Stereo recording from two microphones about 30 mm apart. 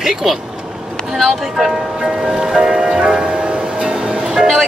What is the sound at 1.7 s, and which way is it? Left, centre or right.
Speech, right.